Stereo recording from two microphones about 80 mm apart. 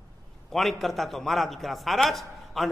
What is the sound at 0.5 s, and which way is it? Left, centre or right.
A man's voice, centre.